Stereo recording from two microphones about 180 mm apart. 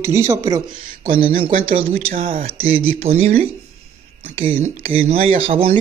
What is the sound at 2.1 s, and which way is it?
Speech, 50° right (ahead or behind).